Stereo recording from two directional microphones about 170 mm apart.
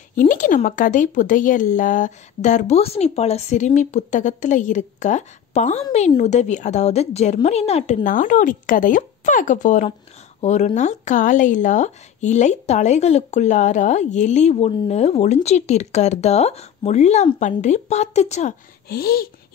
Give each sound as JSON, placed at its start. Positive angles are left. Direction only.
{"t": 0.1, "sound": "a woman's voice", "side_deg": 50}
{"t": 18.9, "sound": "speech", "side_deg": 65}